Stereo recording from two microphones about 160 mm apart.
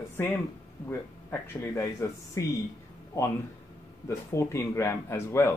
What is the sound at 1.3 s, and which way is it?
Speech, 15° left (ahead or behind).